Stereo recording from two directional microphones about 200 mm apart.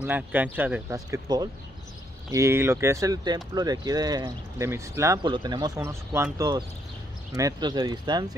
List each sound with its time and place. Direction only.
0.0 s speech: 10° right (ahead or behind)